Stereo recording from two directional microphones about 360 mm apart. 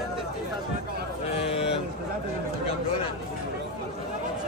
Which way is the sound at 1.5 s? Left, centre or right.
Centre.